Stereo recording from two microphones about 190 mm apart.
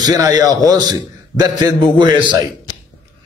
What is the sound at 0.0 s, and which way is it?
A man's voice, 20° right (ahead or behind).